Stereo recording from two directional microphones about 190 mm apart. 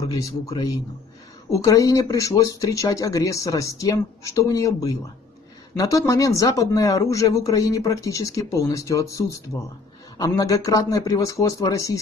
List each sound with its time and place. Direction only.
0.0 s a man's voice: 20° left (ahead or behind)